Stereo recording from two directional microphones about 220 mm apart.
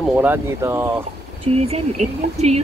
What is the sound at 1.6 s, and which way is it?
Speech, 30° right (ahead or behind).